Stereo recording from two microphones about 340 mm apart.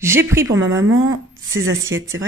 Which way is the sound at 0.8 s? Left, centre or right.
Right.